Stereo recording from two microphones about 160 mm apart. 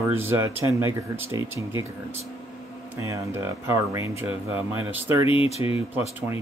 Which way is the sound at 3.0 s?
15° right (ahead or behind).